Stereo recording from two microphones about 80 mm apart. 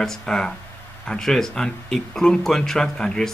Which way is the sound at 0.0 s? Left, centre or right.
Centre.